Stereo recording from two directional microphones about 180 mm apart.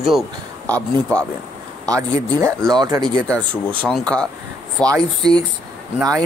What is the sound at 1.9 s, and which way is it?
Speech, 20° right (ahead or behind).